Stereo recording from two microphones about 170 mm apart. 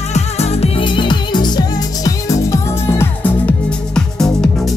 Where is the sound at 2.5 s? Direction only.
15° left (ahead or behind).